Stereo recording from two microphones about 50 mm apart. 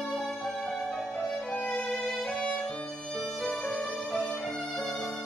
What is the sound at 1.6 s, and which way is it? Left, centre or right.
Violin, centre.